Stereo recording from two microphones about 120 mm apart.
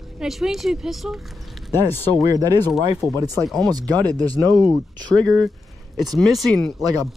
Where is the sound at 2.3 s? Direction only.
30° right (ahead or behind).